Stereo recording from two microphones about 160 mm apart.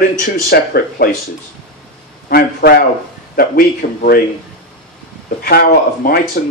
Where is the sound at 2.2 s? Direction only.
70° left (ahead or behind).